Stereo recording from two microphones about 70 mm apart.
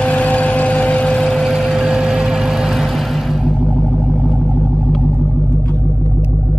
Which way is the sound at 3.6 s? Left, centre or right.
Centre.